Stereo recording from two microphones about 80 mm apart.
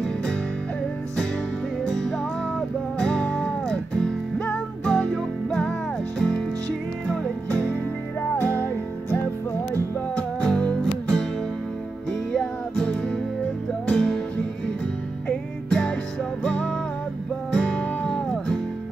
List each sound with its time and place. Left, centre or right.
1.9 s music: centre
7.4 s music: centre
10.1 s music: centre
15.7 s music: centre